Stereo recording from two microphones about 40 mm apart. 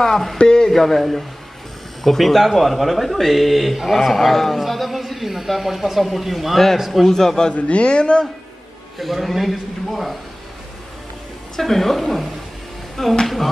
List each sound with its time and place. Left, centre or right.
0.0 s a woman's voice: centre
0.4 s a sound: centre
0.7 s a woman's voice: centre
7.5 s speech: left
8.9 s speech: centre
11.5 s a woman's voice: centre